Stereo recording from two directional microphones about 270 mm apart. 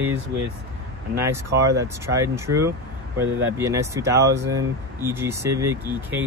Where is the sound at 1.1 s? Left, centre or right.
Centre.